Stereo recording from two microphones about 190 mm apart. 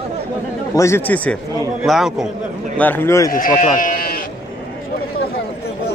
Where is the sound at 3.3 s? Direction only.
45° left (ahead or behind).